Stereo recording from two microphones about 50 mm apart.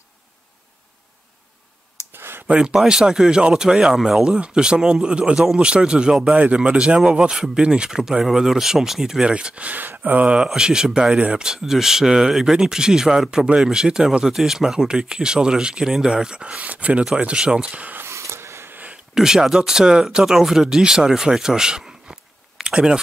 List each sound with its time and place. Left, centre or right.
2.1 s a sound: right
2.4 s speech: centre
9.3 s speech: right
9.7 s speech: right
10.2 s speech: centre
11.1 s speech: right
11.4 s speech: centre
18.0 s a sound: right
19.1 s speech: centre
22.6 s a sound: centre